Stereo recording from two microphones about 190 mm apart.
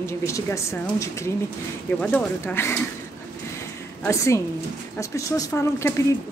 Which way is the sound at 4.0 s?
15° left (ahead or behind).